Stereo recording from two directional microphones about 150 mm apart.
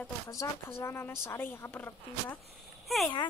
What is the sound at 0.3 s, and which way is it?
A woman's voice, 20° left (ahead or behind).